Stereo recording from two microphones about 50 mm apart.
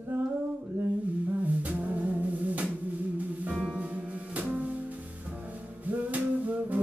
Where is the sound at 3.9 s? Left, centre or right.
Right.